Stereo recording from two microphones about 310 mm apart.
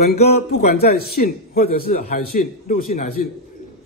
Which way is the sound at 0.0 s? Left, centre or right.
Left.